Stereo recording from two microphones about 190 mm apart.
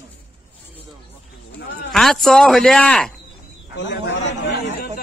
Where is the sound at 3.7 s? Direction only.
70° left (ahead or behind).